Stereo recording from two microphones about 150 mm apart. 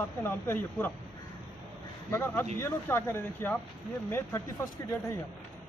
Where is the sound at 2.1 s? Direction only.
15° left (ahead or behind).